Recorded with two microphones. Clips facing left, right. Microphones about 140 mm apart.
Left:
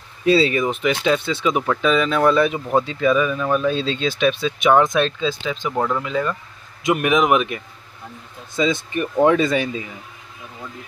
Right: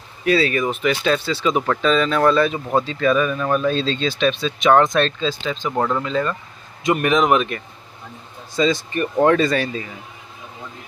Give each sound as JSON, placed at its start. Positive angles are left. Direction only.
{"t": 0.2, "sound": "speech", "side_deg": 25}
{"t": 5.7, "sound": "speech", "side_deg": -5}
{"t": 6.0, "sound": "speech", "side_deg": 10}